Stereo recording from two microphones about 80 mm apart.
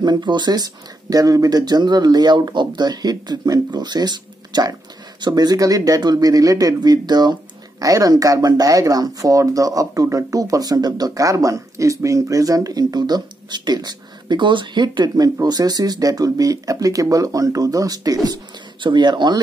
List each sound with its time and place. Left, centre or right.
0.0 s speech: right
1.1 s speech: right
7.8 s speech: right